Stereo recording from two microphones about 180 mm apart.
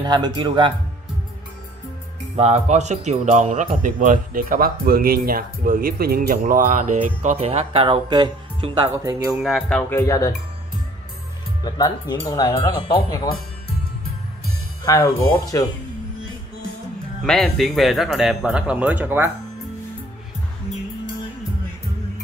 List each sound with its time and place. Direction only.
0.0 s speech: 25° right (ahead or behind)
2.3 s speech: 35° right (ahead or behind)
9.3 s speech: centre (ahead or behind); by 10.3 s 15° left (ahead or behind)
11.6 s speech: 20° left (ahead or behind)
14.9 s speech: 15° left (ahead or behind)
17.2 s a man's voice: centre (ahead or behind)